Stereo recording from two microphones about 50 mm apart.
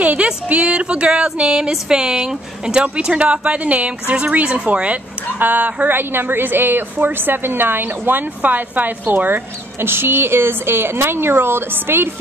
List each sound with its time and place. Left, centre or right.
0.0 s speech: right
5.9 s a woman's voice: right